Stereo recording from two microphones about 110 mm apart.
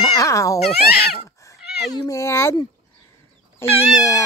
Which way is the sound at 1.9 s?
30° left (ahead or behind).